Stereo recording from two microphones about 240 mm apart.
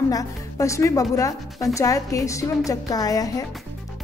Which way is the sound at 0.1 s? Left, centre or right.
Centre.